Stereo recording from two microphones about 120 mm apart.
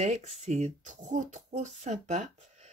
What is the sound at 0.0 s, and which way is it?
Speech, 65° right (ahead or behind).